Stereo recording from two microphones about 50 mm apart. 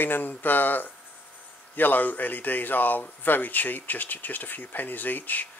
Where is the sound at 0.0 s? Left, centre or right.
Left.